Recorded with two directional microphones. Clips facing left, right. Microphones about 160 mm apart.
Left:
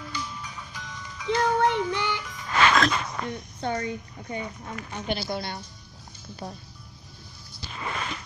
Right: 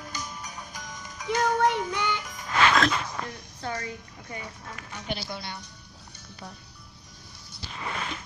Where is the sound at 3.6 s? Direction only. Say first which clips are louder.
Left 5 dB; 25° left (ahead or behind).